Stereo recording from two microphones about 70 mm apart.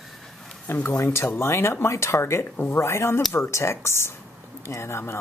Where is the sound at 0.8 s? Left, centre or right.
Left.